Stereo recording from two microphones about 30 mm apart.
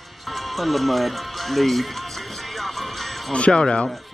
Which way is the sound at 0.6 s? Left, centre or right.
Centre.